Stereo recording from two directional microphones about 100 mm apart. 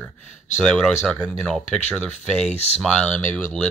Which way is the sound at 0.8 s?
5° left (ahead or behind).